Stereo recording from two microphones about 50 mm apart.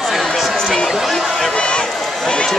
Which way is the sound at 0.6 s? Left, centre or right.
Centre.